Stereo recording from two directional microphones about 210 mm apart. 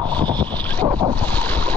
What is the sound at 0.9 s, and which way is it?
Boat, 20° right (ahead or behind).